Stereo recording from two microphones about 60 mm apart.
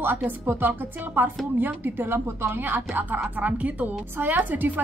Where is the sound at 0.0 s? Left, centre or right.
Right.